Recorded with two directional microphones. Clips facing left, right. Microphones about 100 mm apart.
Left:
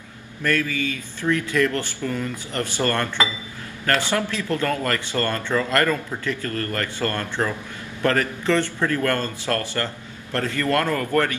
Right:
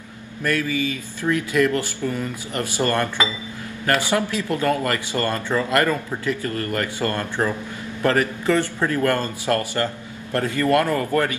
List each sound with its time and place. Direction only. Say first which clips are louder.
0.4 s speech: right 1 dB; 15° right (ahead or behind)